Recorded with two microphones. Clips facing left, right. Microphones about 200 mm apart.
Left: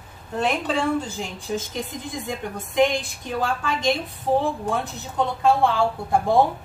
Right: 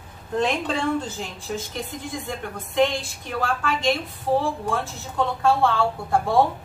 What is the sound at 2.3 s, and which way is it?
Speech, 15° left (ahead or behind).